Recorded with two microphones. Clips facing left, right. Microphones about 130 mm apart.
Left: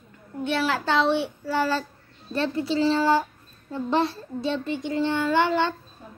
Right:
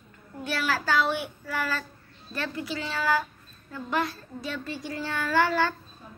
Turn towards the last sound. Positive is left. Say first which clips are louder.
# left 2 dB
turn(degrees=20)  # may be behind; listen again after turning